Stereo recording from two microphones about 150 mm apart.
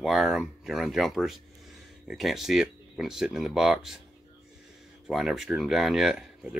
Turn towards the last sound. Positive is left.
turn(degrees=-5)  # may be behind; listen again after turning